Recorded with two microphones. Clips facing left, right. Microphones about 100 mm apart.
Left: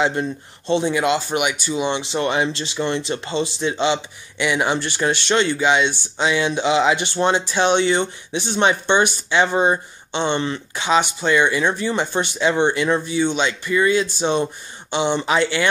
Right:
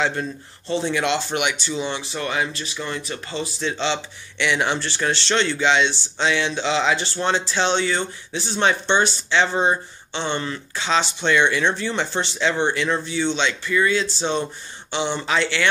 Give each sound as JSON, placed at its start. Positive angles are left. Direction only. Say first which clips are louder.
{"t": 0.0, "sound": "speech", "louder": "left 3 dB", "side_deg": 20}